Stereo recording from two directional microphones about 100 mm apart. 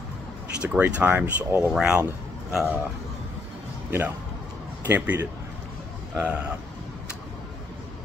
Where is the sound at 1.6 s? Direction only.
10° right (ahead or behind).